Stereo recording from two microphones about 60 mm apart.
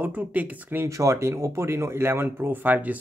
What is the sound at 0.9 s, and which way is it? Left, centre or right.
Speech, right.